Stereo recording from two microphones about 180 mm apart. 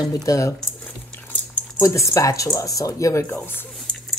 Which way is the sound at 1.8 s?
15° left (ahead or behind).